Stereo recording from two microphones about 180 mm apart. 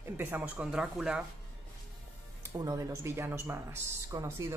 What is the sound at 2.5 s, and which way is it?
Speech, 20° right (ahead or behind).